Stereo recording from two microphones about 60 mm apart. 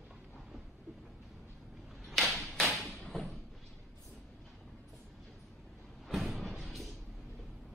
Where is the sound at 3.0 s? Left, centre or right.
Centre.